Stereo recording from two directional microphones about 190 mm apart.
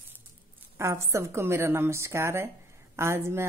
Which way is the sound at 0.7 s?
15° right (ahead or behind).